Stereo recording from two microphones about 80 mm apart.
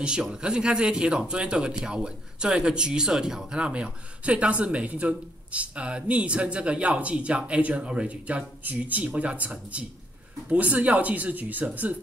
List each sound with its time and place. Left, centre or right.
0.0 s speech: centre